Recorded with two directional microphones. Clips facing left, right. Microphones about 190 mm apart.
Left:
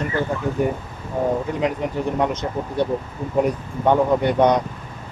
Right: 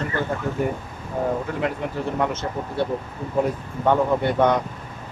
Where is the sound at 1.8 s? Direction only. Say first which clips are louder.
Left 3 dB; 15° left (ahead or behind).